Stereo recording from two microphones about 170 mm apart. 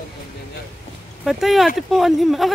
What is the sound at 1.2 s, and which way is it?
Speech, centre (ahead or behind).